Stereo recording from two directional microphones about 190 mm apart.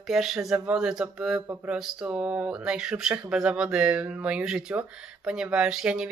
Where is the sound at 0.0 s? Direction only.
Centre (ahead or behind).